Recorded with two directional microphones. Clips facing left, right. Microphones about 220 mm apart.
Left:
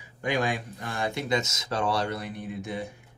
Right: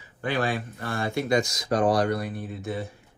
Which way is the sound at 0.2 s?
15° left (ahead or behind).